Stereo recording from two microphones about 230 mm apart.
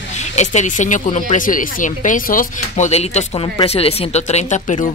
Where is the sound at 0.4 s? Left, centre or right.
Left.